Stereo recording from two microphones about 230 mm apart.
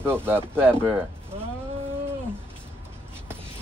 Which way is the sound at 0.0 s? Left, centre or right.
Centre.